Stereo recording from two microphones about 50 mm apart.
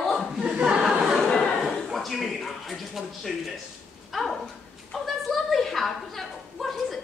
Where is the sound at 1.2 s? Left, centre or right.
Centre.